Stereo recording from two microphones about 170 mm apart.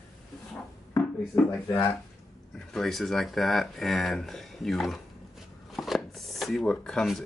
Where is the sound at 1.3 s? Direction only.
10° left (ahead or behind).